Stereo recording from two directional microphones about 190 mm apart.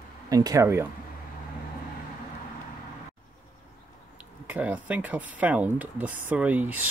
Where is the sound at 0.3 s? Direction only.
20° right (ahead or behind).